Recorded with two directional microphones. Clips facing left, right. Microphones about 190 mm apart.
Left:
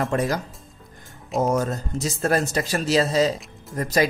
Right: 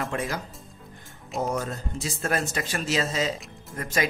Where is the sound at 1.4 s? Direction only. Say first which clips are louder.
Left 6 dB; 45° left (ahead or behind).